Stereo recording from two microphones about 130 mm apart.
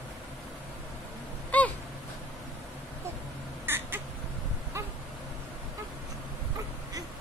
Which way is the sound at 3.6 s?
15° right (ahead or behind).